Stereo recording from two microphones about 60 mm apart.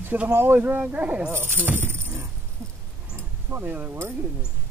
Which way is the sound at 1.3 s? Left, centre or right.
Right.